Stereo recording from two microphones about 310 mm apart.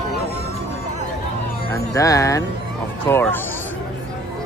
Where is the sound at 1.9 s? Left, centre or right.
Centre.